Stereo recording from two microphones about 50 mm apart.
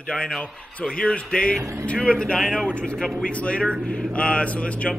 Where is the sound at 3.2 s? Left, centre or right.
Left.